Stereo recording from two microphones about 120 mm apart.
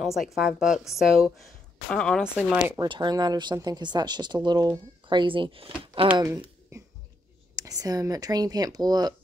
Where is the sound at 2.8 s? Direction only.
35° right (ahead or behind).